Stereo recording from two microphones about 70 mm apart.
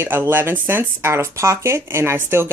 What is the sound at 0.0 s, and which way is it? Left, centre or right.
Speech, right.